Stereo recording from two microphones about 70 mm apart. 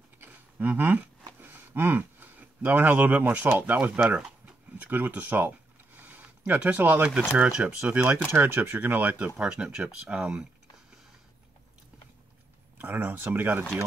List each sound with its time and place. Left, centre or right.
0.2 s a sound: right
3.4 s speech: right
4.7 s a sound: right
7.2 s speech: right
8.3 s speech: right
9.4 s speech: centre
12.7 s speech: right